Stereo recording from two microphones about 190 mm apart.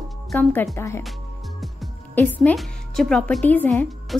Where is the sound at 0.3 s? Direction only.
10° left (ahead or behind).